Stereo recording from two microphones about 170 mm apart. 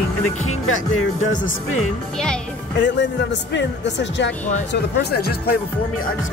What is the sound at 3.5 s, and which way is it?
Speech, 90° left.